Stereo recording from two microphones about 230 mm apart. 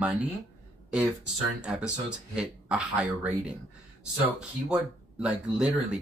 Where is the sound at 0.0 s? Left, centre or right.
Centre.